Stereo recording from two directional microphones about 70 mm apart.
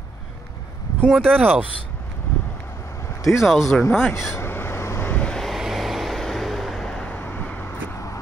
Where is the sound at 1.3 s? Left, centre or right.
Right.